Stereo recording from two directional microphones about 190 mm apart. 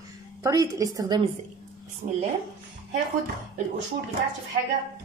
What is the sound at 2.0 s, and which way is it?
Speech, 30° right (ahead or behind).